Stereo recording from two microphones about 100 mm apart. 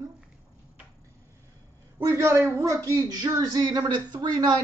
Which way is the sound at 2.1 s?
25° right (ahead or behind).